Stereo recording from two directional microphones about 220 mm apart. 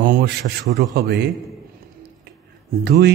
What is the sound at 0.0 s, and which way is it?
A man's voice, 40° right (ahead or behind).